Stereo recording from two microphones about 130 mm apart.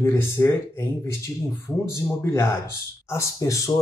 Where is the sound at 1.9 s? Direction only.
20° left (ahead or behind).